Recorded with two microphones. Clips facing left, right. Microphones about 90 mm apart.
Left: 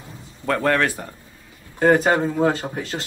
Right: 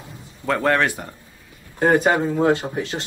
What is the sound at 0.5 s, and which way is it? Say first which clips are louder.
Speech: right 1 dB; 20° right (ahead or behind).